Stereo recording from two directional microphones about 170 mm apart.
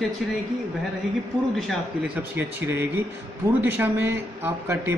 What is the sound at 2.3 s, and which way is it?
Speech, 15° right (ahead or behind).